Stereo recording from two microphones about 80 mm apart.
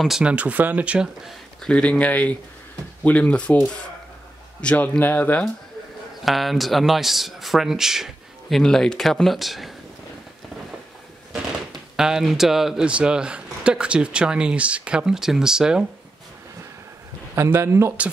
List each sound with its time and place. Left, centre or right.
0.2 s speech: centre
1.6 s speech: centre
6.2 s a man's voice: centre
12.0 s speech: centre
17.4 s speech: right